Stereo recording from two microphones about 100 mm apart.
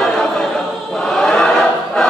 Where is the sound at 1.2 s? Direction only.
5° left (ahead or behind).